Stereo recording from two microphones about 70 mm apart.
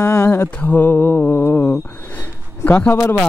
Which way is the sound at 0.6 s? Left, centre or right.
Left.